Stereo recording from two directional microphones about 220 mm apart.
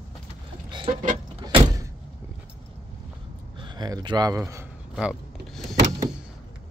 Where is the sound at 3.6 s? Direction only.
20° right (ahead or behind); by 5.6 s 5° right (ahead or behind).